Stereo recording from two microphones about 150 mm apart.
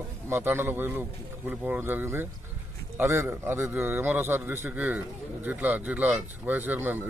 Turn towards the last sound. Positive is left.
turn(degrees=-10)  # may be behind; listen again after turning